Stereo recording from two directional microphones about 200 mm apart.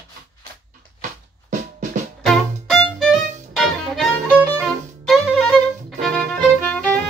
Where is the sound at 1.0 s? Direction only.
40° right (ahead or behind).